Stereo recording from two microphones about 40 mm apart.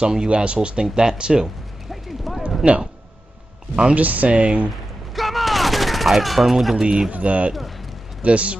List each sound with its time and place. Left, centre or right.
0.0 s speech: right
1.9 s a sound: centre
3.9 s speech: right
4.3 s speech: right
5.1 s gunshot: centre
6.8 s speech: right
7.1 s speech: right